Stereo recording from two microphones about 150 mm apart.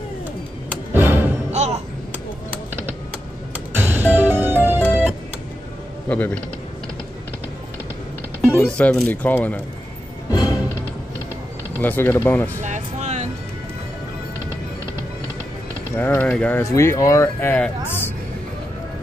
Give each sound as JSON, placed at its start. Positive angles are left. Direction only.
{"t": 0.9, "sound": "music", "side_deg": -15}
{"t": 1.5, "sound": "music", "side_deg": -50}
{"t": 3.7, "sound": "music", "side_deg": -15}
{"t": 6.0, "sound": "speech", "side_deg": 10}
{"t": 8.6, "sound": "speech", "side_deg": 5}
{"t": 10.3, "sound": "music", "side_deg": 25}
{"t": 11.8, "sound": "speech", "side_deg": 10}
{"t": 12.6, "sound": "music", "side_deg": -50}
{"t": 16.0, "sound": "speech", "side_deg": 15}